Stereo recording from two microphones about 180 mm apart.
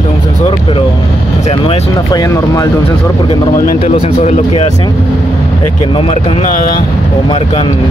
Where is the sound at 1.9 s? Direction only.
20° left (ahead or behind).